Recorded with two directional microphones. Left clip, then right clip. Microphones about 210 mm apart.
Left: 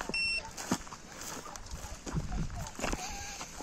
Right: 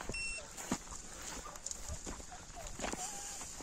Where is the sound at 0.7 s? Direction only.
50° left (ahead or behind).